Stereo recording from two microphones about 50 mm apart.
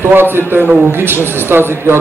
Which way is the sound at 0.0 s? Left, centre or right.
Right.